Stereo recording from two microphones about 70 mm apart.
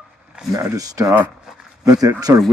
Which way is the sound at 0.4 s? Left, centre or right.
Centre.